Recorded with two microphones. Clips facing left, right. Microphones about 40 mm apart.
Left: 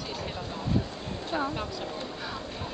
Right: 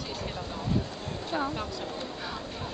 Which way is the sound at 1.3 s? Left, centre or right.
Centre.